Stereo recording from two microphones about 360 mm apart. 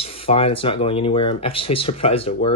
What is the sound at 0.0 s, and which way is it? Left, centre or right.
Speech, centre.